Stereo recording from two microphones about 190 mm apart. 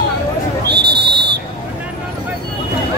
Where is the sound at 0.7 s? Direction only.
60° right (ahead or behind).